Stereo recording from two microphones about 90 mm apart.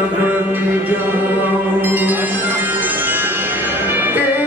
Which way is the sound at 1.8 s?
20° right (ahead or behind).